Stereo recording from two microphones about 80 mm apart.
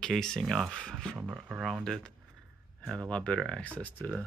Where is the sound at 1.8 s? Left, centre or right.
Centre.